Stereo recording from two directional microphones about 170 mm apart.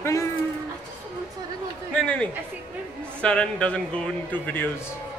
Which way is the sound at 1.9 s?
5° left (ahead or behind).